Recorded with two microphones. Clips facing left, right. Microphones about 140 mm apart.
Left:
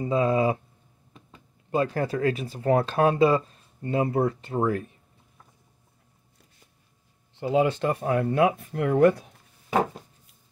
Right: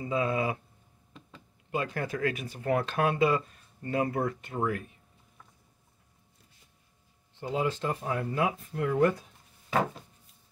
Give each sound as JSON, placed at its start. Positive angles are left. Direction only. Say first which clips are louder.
{"t": 0.0, "sound": "speech", "louder": "left 6 dB", "side_deg": 35}
{"t": 1.7, "sound": "speech", "louder": "left 7 dB", "side_deg": 35}
{"t": 7.3, "sound": "speech", "louder": "left 8 dB", "side_deg": 70}